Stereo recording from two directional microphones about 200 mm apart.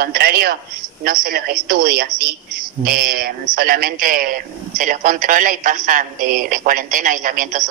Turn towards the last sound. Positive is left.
turn(degrees=-40)  # may be behind; listen again after turning